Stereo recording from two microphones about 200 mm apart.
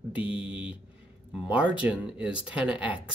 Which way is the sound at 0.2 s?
25° left (ahead or behind).